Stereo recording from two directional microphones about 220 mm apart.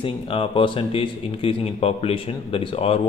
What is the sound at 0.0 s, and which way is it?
A man's voice, 25° left (ahead or behind).